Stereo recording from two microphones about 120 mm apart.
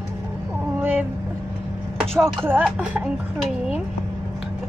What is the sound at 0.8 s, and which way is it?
Speech, 15° right (ahead or behind).